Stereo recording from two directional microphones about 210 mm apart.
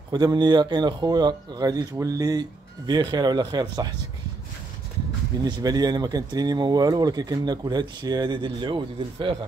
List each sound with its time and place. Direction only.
0.1 s speech: 20° right (ahead or behind)
5.4 s speech: 20° right (ahead or behind)